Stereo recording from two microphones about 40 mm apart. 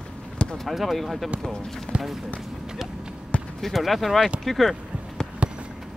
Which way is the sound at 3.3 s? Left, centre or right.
Left.